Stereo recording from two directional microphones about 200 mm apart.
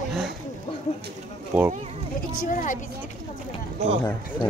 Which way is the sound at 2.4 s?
40° left (ahead or behind).